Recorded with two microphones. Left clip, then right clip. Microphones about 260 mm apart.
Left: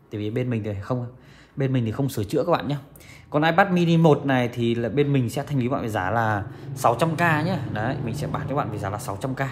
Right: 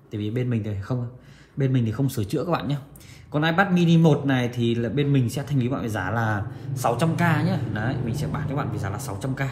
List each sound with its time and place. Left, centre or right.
0.1 s a man's voice: left